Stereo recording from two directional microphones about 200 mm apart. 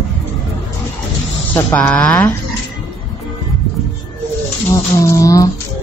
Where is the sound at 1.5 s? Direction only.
10° left (ahead or behind).